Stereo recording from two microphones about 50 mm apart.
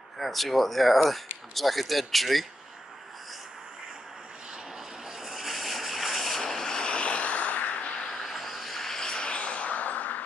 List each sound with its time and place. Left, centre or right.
0.2 s speech: centre
5.2 s vehicle: centre; by 7.9 s left
8.1 s a sound: centre; by 10.2 s left